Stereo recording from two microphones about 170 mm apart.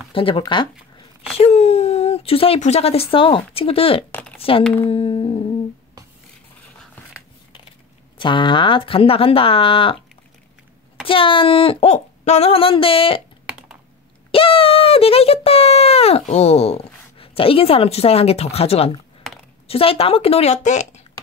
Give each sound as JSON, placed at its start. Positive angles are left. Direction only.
{"t": 0.1, "sound": "speech", "side_deg": 30}
{"t": 4.8, "sound": "humming", "side_deg": 30}
{"t": 8.2, "sound": "speech", "side_deg": 30}
{"t": 11.1, "sound": "speech", "side_deg": 30}
{"t": 13.5, "sound": "computer keyboard", "side_deg": -5}
{"t": 14.3, "sound": "speech", "side_deg": 30}